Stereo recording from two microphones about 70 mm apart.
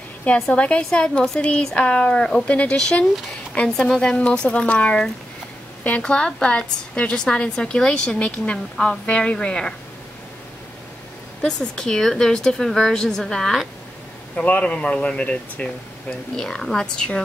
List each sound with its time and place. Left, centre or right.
0.2 s a woman's voice: centre
11.7 s a woman's voice: centre
14.3 s speech: centre
16.1 s a woman's voice: centre